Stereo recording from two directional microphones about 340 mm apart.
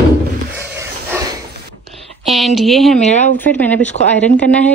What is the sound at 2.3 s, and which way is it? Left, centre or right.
Speech, centre.